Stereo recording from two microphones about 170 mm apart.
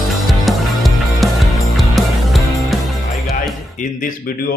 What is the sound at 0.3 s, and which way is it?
Music, centre (ahead or behind).